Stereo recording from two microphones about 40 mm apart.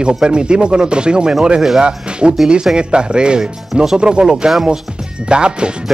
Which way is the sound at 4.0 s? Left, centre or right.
Right.